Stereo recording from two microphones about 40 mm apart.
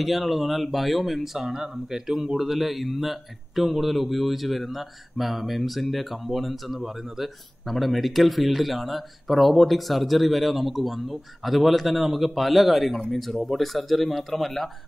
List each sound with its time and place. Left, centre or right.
0.0 s speech: centre